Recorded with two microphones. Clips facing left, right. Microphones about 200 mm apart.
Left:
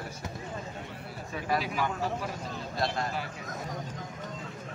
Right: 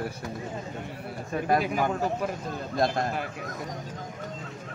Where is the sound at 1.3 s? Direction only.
50° right (ahead or behind).